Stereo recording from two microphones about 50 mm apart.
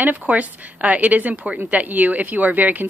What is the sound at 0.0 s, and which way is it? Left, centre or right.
Speech, right.